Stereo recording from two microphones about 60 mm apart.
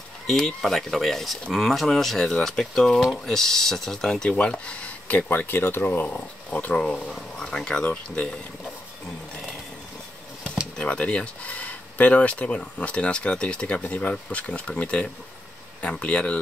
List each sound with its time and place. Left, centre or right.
0.6 s speech: centre; by 6.0 s left
6.0 s speech: left
7.8 s speech: left
10.8 s speech: centre